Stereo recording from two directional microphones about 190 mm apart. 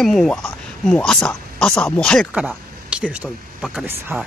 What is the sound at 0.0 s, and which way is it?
Speech, centre (ahead or behind).